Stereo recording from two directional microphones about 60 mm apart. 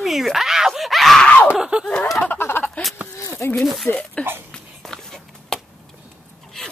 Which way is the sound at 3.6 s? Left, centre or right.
Centre.